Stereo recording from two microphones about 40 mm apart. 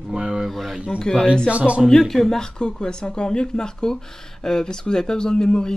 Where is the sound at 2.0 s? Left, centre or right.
Centre.